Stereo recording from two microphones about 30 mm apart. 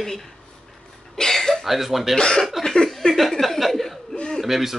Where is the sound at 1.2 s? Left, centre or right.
Centre.